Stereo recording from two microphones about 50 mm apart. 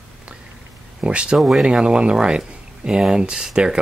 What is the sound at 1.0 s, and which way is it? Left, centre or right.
Speech, right.